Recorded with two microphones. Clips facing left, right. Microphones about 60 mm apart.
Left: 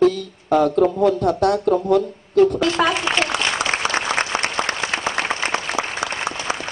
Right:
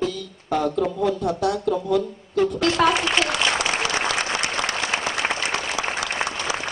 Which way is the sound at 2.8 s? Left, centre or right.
Centre.